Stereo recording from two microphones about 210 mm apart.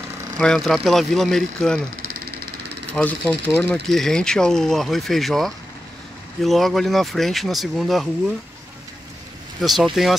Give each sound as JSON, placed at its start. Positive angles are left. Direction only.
{"t": 0.4, "sound": "speech", "side_deg": 0}
{"t": 2.0, "sound": "engine", "side_deg": -90}
{"t": 3.0, "sound": "speech", "side_deg": 5}
{"t": 9.6, "sound": "speech", "side_deg": 0}